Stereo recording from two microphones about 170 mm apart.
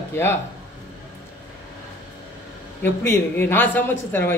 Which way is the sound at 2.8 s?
15° left (ahead or behind).